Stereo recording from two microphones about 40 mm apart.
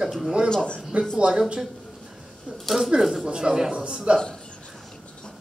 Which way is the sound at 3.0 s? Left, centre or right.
Centre.